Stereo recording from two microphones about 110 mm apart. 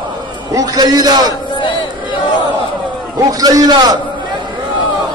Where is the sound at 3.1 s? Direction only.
35° right (ahead or behind).